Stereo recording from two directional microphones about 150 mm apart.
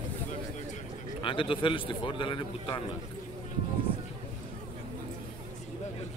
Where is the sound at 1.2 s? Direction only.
35° left (ahead or behind).